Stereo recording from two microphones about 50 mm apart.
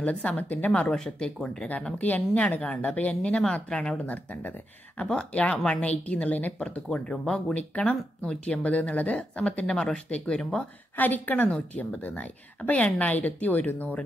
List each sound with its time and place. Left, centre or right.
0.0 s a woman's voice: left
0.7 s speech: centre
2.0 s a woman's voice: left
3.2 s speech: centre
4.1 s a woman's voice: left
6.6 s a woman's voice: centre
7.5 s a woman's voice: left
9.7 s speech: centre
10.0 s a woman's voice: left
11.0 s speech: left